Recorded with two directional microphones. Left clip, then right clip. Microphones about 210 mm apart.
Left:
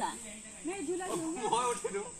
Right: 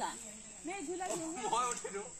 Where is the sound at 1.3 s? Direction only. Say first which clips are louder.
Left 3 dB; 10° right (ahead or behind).